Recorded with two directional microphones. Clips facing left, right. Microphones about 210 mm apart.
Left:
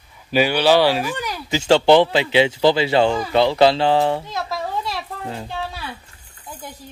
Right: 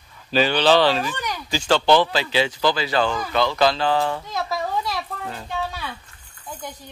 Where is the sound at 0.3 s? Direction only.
10° left (ahead or behind).